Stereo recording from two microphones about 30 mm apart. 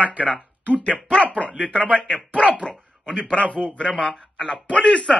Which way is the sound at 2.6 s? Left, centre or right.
Left.